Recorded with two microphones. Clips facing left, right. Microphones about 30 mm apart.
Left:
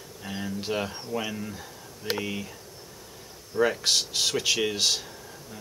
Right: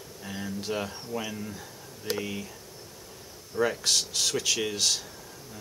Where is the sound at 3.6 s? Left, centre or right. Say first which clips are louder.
Left 2 dB; centre.